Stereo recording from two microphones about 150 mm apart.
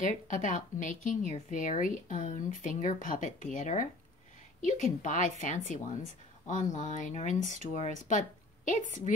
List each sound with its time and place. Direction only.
0.0 s a woman's voice: 60° left (ahead or behind)